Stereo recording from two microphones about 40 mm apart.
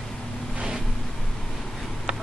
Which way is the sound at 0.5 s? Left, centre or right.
Right.